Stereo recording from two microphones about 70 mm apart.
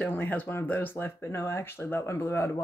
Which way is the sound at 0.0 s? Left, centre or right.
Left.